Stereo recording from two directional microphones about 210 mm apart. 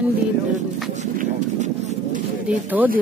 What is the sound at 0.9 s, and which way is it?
Speech, 35° right (ahead or behind).